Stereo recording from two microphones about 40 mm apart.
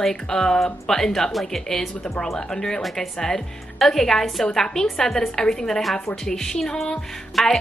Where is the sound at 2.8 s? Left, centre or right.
Centre.